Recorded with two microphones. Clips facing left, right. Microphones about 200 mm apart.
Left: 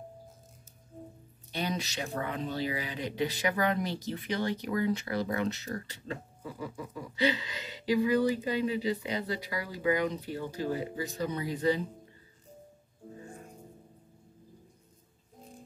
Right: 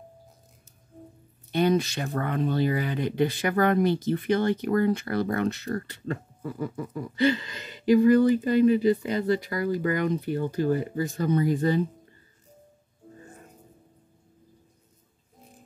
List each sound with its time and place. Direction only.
1.5 s speech: 55° right (ahead or behind)